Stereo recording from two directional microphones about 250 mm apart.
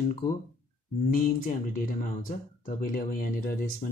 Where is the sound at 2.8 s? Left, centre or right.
Left.